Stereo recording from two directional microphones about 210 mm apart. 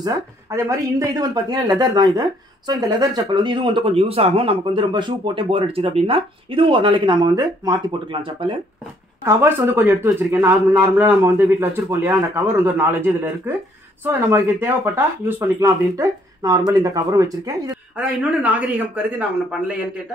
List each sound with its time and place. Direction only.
0.0 s speech: 15° right (ahead or behind)
9.2 s speech: 10° right (ahead or behind)